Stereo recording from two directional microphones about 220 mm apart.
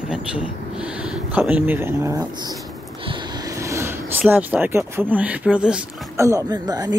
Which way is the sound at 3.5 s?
15° right (ahead or behind).